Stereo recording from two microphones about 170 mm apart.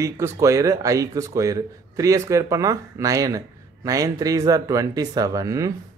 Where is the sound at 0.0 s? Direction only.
20° right (ahead or behind).